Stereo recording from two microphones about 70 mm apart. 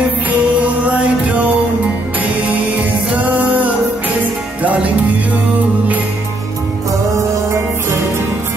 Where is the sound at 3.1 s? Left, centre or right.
Right.